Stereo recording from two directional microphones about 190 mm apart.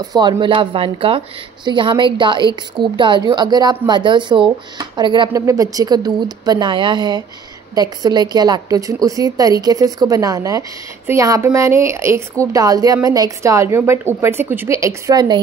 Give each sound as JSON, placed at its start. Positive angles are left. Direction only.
{"t": 0.0, "sound": "a woman's voice", "side_deg": -20}